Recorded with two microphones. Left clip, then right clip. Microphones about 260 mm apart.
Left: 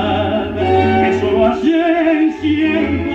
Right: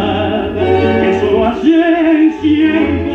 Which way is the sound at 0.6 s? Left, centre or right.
Left.